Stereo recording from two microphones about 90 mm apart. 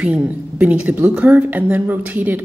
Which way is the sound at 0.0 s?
15° right (ahead or behind).